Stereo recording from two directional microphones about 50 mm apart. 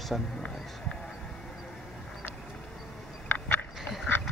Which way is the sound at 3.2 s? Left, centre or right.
Left.